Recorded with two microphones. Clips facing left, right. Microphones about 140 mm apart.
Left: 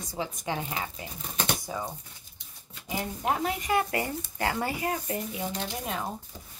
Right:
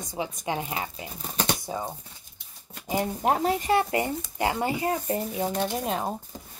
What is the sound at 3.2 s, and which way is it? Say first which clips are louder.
Speech: right 4 dB; 35° right (ahead or behind).